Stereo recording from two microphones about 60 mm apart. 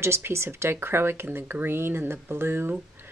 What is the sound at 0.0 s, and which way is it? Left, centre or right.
Speech, right.